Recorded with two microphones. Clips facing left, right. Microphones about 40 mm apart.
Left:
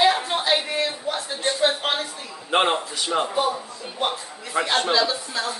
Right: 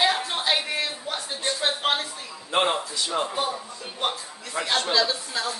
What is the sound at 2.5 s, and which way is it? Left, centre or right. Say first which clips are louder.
Speech: left 3 dB; left.